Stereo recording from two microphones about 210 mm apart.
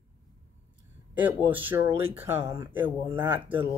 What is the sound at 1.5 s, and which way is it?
Speech, 10° right (ahead or behind).